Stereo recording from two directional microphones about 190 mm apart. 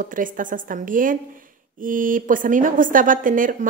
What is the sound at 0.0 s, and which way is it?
A woman's voice, 45° right (ahead or behind).